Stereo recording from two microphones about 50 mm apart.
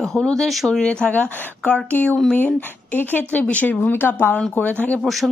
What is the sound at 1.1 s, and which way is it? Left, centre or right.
A woman's voice, left.